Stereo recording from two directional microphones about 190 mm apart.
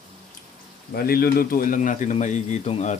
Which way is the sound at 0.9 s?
55° left (ahead or behind).